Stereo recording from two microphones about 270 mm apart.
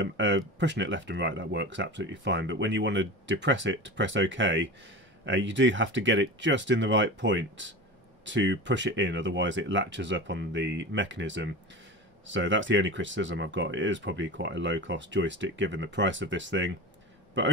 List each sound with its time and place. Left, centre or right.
0.0 s speech: right